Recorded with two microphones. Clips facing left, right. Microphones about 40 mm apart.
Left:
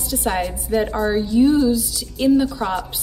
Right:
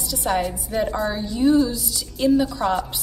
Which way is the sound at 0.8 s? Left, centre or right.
Centre.